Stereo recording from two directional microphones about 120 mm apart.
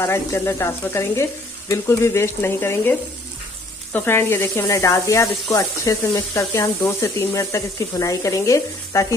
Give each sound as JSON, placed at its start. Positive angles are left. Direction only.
{"t": 0.0, "sound": "speech", "side_deg": 20}